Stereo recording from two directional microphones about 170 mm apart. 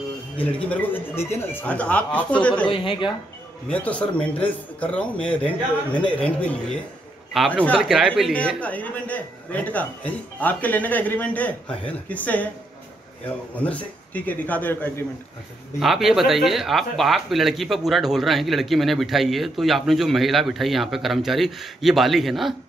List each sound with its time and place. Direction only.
0.4 s speech: 10° left (ahead or behind)
2.7 s speech: 30° left (ahead or behind)
3.6 s speech: 5° left (ahead or behind)
7.8 s speech: 5° right (ahead or behind)
8.3 s speech: 5° left (ahead or behind)
13.6 s speech: 10° left (ahead or behind)
15.8 s speech: centre (ahead or behind)